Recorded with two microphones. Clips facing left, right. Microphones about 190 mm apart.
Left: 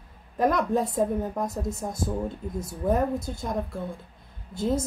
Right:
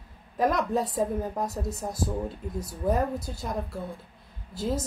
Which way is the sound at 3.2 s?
5° right (ahead or behind).